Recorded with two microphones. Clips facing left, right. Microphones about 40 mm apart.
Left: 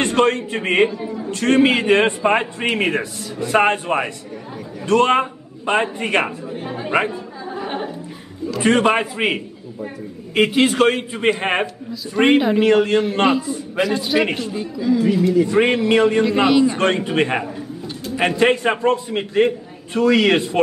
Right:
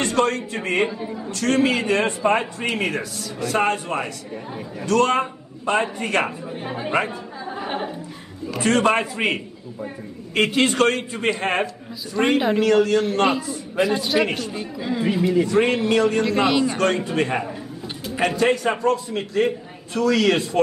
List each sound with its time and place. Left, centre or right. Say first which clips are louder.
0.0 s a man's voice: left 4 dB; left
6.5 s speech: left 3 dB; centre
8.5 s a man's voice: left 3 dB; centre
11.3 s a man's voice: left 2 dB; left
13.9 s speech: left 2 dB; centre
14.2 s a man's voice: left 2 dB; centre
14.8 s speech: left 6 dB; right
15.1 s a man's voice: left 3 dB; centre
15.4 s a man's voice: left 3 dB; left
16.3 s speech: left 4 dB; centre
16.7 s a man's voice: left 3 dB; left